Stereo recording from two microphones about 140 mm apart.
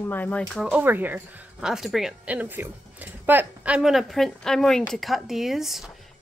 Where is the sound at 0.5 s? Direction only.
10° right (ahead or behind).